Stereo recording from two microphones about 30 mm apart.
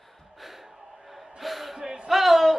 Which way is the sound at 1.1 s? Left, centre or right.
Centre.